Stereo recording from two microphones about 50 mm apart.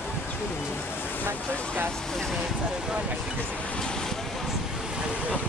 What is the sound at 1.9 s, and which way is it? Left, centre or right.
Vehicle, centre.